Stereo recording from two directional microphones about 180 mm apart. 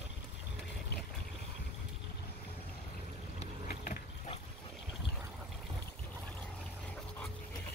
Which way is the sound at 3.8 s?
50° left (ahead or behind).